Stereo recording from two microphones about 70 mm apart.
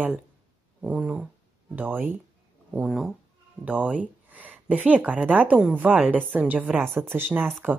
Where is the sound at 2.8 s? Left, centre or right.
Centre.